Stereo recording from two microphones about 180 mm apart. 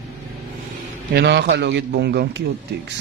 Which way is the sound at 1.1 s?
70° right (ahead or behind).